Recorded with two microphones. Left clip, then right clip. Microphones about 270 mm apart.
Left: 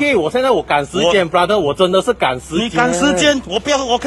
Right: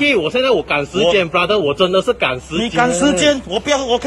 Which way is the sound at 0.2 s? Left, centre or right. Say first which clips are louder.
Left 1 dB; left.